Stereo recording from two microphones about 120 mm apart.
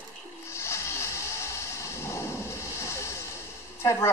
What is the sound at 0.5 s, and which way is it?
Music, 20° left (ahead or behind).